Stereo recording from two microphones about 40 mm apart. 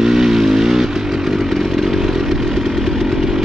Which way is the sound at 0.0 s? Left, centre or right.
Centre.